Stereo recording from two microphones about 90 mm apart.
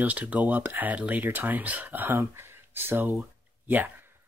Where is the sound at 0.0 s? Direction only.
15° right (ahead or behind).